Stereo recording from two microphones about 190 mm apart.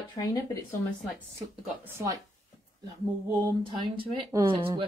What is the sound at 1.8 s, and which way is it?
Speech, 15° right (ahead or behind).